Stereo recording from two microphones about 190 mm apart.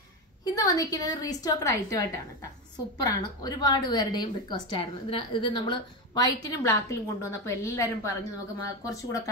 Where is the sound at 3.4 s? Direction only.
20° left (ahead or behind).